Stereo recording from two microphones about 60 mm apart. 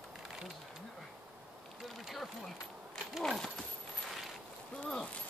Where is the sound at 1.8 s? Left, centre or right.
Centre.